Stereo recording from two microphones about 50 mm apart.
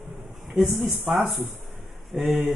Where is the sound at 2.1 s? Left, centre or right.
Centre.